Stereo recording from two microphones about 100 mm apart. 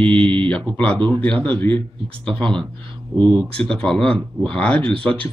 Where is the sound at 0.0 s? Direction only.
10° left (ahead or behind).